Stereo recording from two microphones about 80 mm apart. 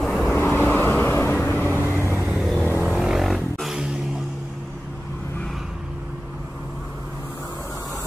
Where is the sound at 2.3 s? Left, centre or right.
Centre.